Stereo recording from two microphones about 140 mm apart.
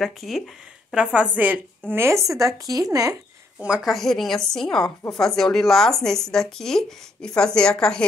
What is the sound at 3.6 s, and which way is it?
Speech, 5° right (ahead or behind).